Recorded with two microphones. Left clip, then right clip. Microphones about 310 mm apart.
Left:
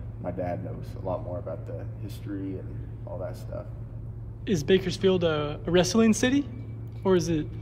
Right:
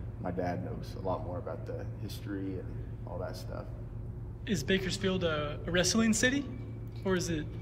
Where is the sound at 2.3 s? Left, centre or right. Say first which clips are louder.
Left 3 dB; centre.